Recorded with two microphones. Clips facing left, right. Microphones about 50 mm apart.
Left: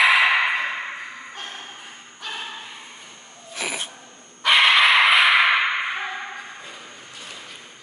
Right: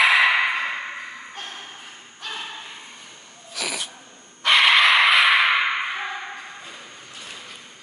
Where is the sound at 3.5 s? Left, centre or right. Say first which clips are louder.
Left 1 dB; left.